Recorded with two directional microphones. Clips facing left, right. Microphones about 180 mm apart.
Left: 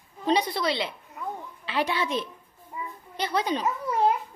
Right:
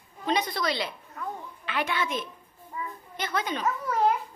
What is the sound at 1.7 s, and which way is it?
Speech, 30° left (ahead or behind).